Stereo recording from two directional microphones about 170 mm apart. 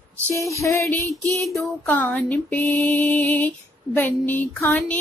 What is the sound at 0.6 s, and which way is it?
Mantra, 15° left (ahead or behind).